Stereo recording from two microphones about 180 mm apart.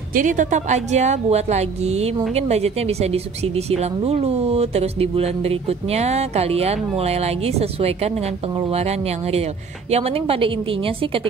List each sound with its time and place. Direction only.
0.1 s speech: 45° right (ahead or behind)